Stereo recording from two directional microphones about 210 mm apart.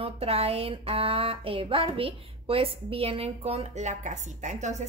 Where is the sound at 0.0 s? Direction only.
30° right (ahead or behind).